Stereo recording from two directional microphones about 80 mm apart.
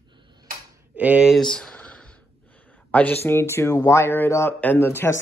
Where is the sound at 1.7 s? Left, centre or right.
Centre.